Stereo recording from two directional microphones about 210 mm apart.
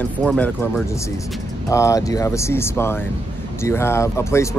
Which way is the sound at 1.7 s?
15° left (ahead or behind).